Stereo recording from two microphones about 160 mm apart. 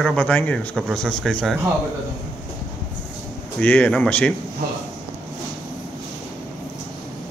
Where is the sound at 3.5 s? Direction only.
10° left (ahead or behind).